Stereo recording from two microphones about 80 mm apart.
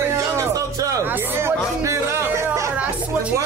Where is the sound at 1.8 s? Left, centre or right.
Right.